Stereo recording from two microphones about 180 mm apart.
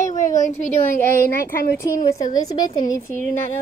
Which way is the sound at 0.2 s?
45° left (ahead or behind).